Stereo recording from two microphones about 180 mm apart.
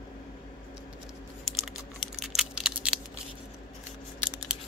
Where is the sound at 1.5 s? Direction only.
Centre (ahead or behind).